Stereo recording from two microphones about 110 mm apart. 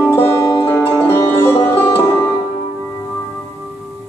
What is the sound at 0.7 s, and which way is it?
Music, 20° left (ahead or behind).